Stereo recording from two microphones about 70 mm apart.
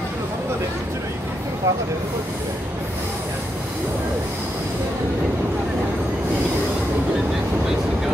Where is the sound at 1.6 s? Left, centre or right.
Right.